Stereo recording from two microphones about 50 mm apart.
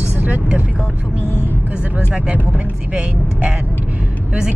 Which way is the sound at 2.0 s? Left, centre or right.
Right.